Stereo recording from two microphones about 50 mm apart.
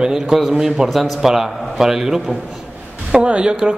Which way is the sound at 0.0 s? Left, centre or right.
Centre.